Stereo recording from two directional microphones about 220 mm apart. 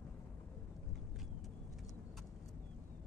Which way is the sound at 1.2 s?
Centre (ahead or behind).